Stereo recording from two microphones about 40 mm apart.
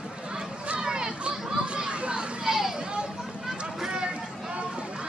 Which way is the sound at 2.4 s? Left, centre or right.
Centre.